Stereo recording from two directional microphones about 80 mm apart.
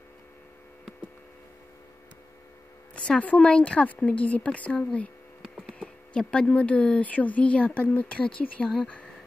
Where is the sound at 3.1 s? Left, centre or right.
Centre.